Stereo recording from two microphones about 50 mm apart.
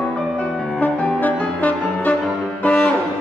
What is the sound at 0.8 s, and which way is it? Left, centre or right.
Music, left.